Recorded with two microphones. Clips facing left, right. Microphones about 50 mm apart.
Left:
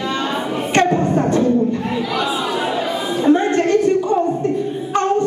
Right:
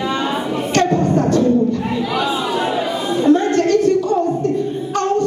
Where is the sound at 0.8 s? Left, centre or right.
Left.